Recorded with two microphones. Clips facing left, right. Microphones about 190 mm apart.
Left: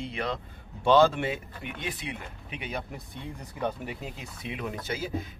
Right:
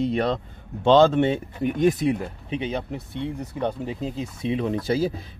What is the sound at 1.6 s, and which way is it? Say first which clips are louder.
Speech: right 16 dB; 40° right (ahead or behind).